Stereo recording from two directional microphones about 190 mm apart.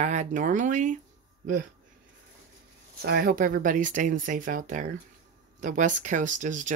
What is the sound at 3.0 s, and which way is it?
Speech, 50° right (ahead or behind).